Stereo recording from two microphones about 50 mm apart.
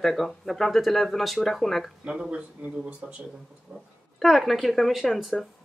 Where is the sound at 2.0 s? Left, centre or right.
Centre.